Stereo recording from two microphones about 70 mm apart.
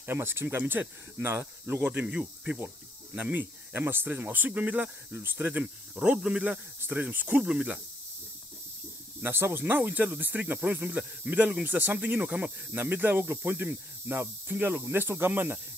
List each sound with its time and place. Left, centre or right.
0.0 s speech: right
5.9 s speech: centre
9.2 s speech: right; by 12.5 s centre
12.7 s speech: right